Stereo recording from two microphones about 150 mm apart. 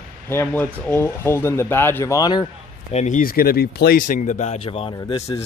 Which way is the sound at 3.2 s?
75° left (ahead or behind).